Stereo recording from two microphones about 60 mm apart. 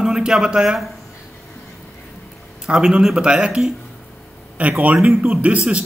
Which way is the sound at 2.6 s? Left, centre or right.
Centre.